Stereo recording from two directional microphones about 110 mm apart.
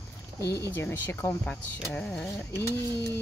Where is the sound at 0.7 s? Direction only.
20° left (ahead or behind).